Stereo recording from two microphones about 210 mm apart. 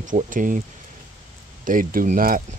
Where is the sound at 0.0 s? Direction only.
40° right (ahead or behind).